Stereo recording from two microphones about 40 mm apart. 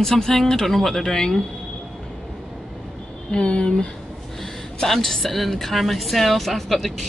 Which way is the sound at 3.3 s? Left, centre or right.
Left.